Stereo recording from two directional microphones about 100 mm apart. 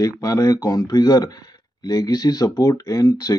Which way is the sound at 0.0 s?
35° left (ahead or behind).